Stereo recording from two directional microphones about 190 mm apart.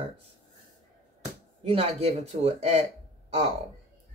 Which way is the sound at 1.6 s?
30° right (ahead or behind).